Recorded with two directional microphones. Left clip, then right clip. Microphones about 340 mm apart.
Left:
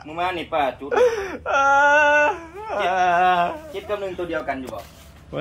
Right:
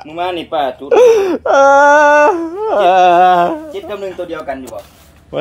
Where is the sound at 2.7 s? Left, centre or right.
Centre.